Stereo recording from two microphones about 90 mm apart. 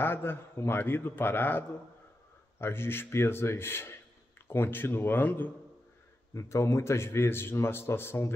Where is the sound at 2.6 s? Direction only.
25° left (ahead or behind).